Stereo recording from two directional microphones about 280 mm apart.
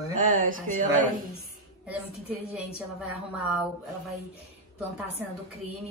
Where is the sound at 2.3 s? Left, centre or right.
Centre.